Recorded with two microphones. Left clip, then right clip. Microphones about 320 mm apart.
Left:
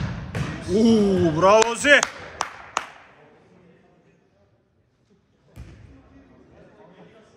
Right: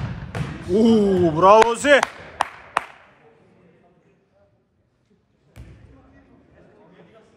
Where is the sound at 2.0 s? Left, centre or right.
Right.